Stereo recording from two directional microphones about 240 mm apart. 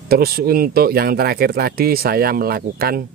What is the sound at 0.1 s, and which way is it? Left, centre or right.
Speech, right.